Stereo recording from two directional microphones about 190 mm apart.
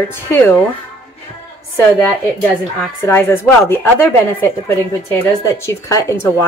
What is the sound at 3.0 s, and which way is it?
A woman's voice, 15° left (ahead or behind).